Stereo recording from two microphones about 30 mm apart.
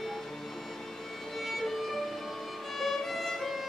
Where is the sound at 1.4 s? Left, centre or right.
Centre.